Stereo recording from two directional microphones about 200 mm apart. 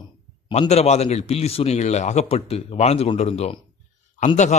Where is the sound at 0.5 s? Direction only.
30° left (ahead or behind).